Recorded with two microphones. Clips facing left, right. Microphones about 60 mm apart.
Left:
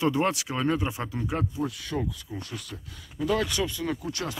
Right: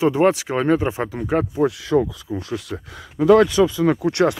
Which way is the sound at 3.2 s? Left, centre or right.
Right.